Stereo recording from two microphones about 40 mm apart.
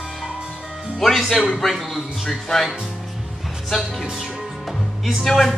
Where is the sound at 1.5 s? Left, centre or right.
Centre.